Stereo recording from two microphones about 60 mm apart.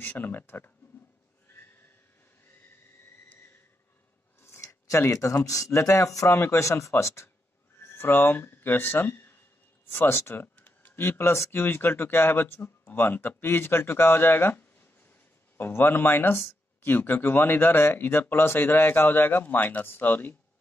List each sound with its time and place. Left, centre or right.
0.0 s speech: left
4.4 s a sound: left
4.8 s speech: left
7.8 s speech: left
9.8 s a sound: left
11.1 s speech: left